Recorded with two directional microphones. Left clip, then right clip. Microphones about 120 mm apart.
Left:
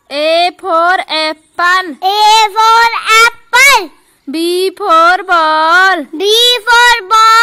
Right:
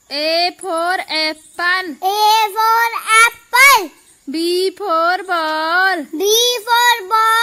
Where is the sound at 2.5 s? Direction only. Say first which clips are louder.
Left 7 dB; 15° right (ahead or behind).